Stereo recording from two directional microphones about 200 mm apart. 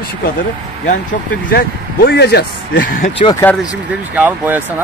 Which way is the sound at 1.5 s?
50° left (ahead or behind).